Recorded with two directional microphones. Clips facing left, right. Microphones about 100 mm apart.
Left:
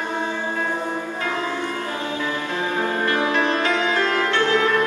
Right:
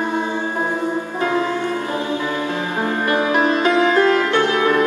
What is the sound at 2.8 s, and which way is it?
Music, 15° right (ahead or behind).